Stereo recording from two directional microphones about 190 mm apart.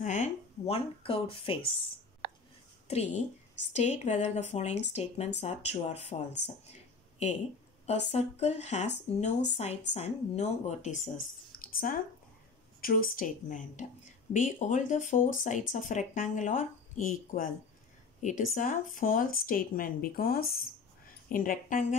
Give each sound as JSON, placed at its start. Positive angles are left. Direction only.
{"t": 0.0, "sound": "speech", "side_deg": 40}
{"t": 2.9, "sound": "speech", "side_deg": 35}
{"t": 6.4, "sound": "a sound", "side_deg": 35}
{"t": 7.8, "sound": "speech", "side_deg": 35}
{"t": 11.6, "sound": "speech", "side_deg": 50}